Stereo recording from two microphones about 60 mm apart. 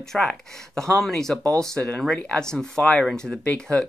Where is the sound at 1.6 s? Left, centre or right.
Centre.